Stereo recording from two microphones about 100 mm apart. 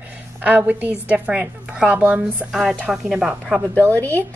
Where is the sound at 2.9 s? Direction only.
5° right (ahead or behind).